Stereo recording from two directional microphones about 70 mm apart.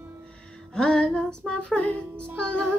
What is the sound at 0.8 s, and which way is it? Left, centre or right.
Music, centre.